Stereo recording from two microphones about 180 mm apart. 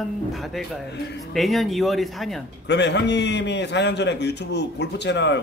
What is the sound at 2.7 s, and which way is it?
A man's voice, 75° left (ahead or behind).